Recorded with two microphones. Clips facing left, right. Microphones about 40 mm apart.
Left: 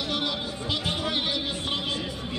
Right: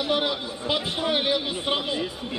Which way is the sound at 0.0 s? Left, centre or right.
Centre.